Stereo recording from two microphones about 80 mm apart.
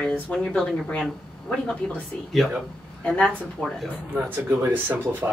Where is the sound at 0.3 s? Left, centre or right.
Centre.